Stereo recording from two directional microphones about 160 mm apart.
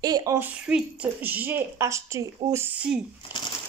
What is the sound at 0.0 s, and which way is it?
Speech, 25° right (ahead or behind).